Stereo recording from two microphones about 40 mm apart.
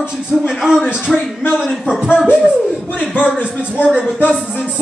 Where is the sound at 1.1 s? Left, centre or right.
Centre.